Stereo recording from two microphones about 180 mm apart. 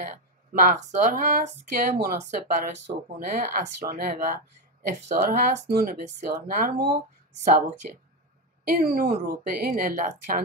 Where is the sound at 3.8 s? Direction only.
55° right (ahead or behind).